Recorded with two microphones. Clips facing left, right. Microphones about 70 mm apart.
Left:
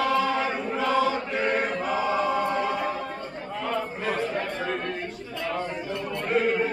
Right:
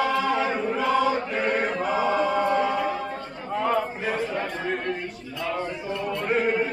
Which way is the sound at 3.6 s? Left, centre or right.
Centre.